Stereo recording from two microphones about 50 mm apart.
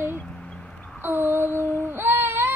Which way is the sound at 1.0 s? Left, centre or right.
Right.